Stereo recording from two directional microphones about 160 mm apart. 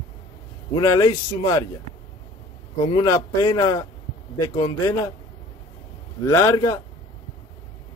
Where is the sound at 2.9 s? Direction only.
25° left (ahead or behind).